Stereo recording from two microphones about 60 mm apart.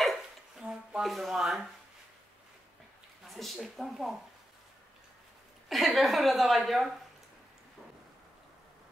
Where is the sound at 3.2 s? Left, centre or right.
Centre.